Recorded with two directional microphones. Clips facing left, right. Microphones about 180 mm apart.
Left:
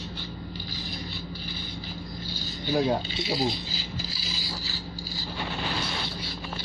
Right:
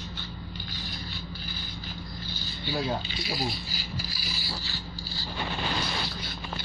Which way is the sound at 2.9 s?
25° left (ahead or behind).